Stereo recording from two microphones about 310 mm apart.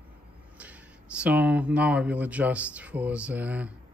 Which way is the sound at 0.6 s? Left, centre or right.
Centre.